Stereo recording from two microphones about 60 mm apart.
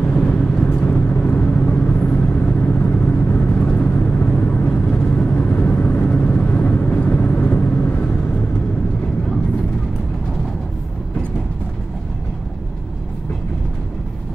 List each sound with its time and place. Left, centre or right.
0.1 s vehicle: centre